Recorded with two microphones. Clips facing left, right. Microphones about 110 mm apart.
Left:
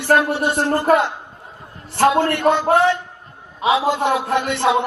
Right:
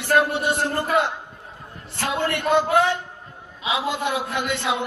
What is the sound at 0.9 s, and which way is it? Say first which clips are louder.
Speech: left 6 dB; 50° left (ahead or behind).